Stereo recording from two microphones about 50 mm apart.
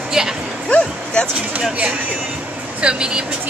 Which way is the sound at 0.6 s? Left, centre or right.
Left.